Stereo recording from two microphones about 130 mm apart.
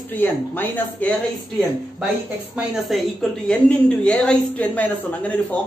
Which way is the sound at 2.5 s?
Centre (ahead or behind).